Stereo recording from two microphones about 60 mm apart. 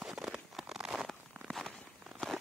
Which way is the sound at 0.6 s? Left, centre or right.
Centre.